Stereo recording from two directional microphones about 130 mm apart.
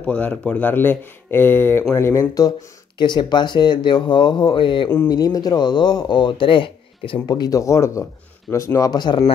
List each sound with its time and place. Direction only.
0.0 s speech: 10° left (ahead or behind); by 4.9 s 40° left (ahead or behind)
4.9 s speech: 25° left (ahead or behind); by 7.2 s 40° left (ahead or behind)
7.2 s speech: 30° left (ahead or behind)